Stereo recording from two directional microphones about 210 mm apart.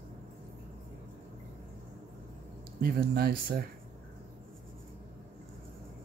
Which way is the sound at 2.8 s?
45° right (ahead or behind).